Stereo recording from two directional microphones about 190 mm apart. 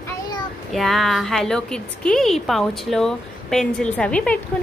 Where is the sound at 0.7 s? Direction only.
Centre (ahead or behind).